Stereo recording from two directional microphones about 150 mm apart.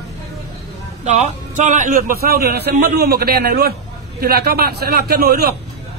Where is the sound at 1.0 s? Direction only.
50° right (ahead or behind); by 5.5 s 90° right.